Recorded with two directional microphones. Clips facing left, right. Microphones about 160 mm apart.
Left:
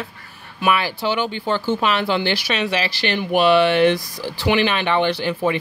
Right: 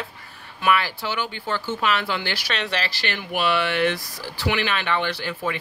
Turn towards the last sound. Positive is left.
turn(degrees=20)  # may be behind; listen again after turning